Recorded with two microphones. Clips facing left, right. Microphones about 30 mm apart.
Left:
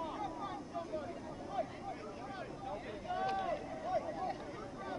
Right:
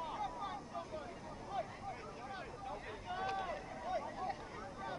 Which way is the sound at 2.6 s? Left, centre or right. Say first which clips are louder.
Left 4 dB; centre.